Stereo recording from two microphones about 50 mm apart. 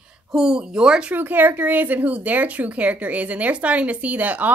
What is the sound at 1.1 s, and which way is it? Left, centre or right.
Speech, right.